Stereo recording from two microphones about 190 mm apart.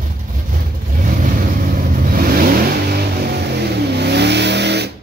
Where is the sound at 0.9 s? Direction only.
45° right (ahead or behind); by 4.9 s 60° right (ahead or behind).